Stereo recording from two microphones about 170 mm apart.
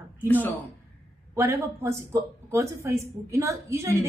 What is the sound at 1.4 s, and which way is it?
Speech, 15° right (ahead or behind).